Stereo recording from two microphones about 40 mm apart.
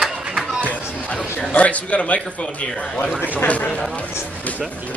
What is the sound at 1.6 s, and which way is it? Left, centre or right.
A man's voice, left.